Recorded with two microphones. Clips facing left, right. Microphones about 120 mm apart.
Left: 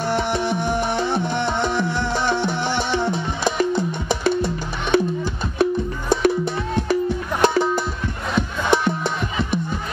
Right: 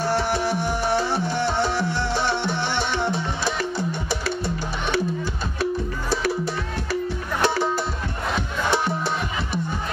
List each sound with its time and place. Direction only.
0.1 s music: 20° left (ahead or behind)
3.4 s music: 20° left (ahead or behind)